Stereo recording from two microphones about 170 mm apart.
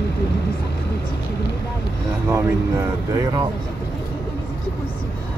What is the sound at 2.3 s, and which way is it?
Vehicle, 15° right (ahead or behind).